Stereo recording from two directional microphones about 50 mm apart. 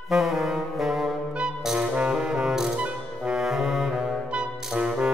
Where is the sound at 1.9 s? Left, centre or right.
Right.